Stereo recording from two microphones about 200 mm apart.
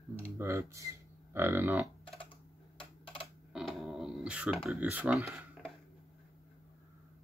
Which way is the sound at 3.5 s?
Centre (ahead or behind).